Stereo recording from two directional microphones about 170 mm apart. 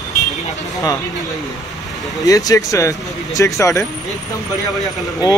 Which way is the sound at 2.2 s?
20° left (ahead or behind).